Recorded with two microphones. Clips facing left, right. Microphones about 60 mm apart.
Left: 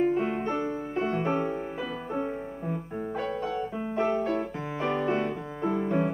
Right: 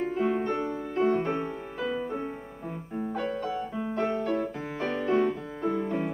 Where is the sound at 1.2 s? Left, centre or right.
Centre.